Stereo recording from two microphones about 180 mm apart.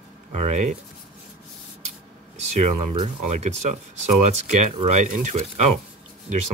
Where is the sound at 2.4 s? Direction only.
35° right (ahead or behind).